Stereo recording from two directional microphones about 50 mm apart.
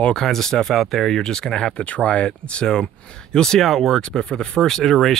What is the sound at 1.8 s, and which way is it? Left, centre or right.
Speech, left.